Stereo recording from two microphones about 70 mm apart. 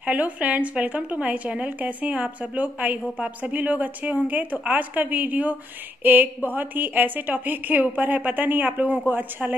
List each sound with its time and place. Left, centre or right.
0.0 s speech: right